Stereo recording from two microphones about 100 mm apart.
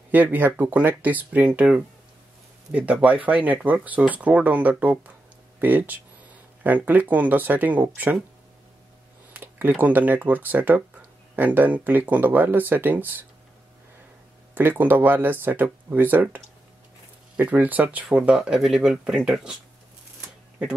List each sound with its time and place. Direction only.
0.1 s speech: 20° right (ahead or behind)
9.3 s speech: 20° right (ahead or behind)
14.5 s speech: 20° right (ahead or behind); by 19.5 s 5° right (ahead or behind)